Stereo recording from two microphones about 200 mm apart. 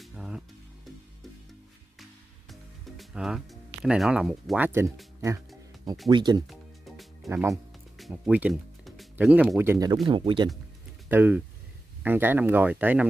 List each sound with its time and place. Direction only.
0.0 s music: 5° right (ahead or behind)
3.0 s speech: centre (ahead or behind)
6.0 s speech: 20° right (ahead or behind)
10.0 s speech: 25° right (ahead or behind)
11.1 s speech: 10° right (ahead or behind)